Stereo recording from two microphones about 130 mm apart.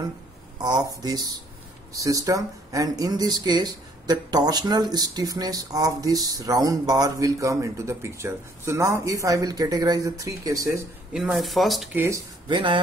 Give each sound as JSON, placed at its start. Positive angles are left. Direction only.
{"t": 0.6, "sound": "speech", "side_deg": -30}
{"t": 11.1, "sound": "speech", "side_deg": 0}
{"t": 11.9, "sound": "speech", "side_deg": -15}
{"t": 12.4, "sound": "speech", "side_deg": -40}